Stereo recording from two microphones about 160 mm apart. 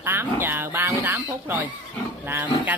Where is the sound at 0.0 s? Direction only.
15° right (ahead or behind).